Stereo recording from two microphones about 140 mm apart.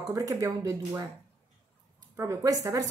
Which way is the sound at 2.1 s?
20° right (ahead or behind).